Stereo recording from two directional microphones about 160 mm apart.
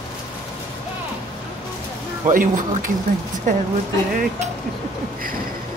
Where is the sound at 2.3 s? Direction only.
55° right (ahead or behind).